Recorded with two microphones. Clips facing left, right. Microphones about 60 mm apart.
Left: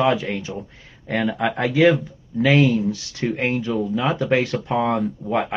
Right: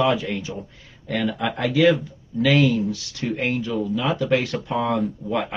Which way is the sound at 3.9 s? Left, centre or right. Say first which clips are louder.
Left 1 dB; left.